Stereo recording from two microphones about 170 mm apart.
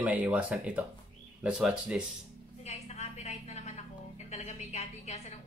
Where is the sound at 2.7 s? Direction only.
40° left (ahead or behind).